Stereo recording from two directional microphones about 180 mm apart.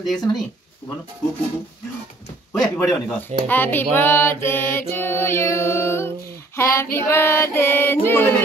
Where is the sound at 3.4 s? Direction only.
10° left (ahead or behind).